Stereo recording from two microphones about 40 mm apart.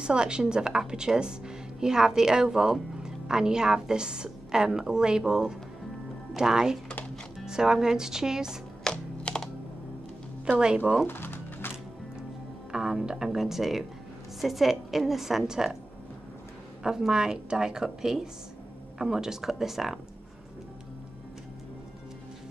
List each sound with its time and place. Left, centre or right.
0.0 s speech: right
8.9 s computer keyboard: left
11.1 s music: left
12.7 s speech: centre
16.8 s speech: centre